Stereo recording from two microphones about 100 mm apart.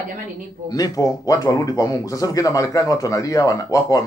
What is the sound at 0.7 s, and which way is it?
Speech, 40° left (ahead or behind).